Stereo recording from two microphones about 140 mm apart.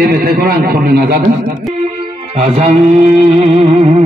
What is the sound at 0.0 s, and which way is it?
A man's voice, 90° right.